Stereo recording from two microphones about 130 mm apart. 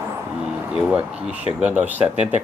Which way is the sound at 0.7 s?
10° right (ahead or behind).